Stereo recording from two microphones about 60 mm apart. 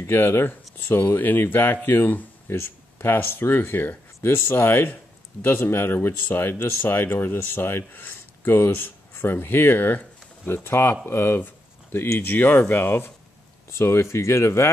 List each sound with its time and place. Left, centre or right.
0.1 s speech: left
13.7 s speech: left